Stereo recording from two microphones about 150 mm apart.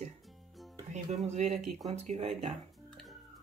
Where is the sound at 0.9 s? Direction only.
50° right (ahead or behind).